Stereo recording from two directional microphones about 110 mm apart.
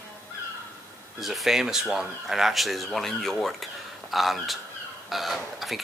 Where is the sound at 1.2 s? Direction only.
Centre (ahead or behind).